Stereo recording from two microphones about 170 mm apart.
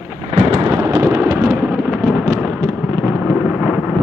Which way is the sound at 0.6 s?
15° right (ahead or behind).